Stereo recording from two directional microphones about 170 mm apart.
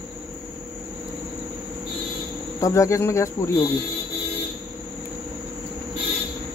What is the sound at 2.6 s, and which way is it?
Speech, 20° left (ahead or behind).